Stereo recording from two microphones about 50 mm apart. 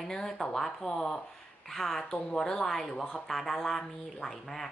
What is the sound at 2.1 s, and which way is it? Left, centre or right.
A woman's voice, centre.